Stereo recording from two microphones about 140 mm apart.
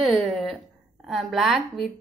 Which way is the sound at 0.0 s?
Centre (ahead or behind).